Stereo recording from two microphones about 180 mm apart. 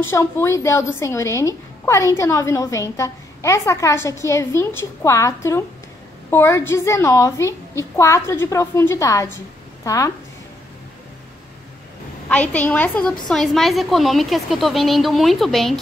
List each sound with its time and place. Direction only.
0.0 s a woman's voice: 15° left (ahead or behind)
12.3 s a woman's voice: 10° left (ahead or behind)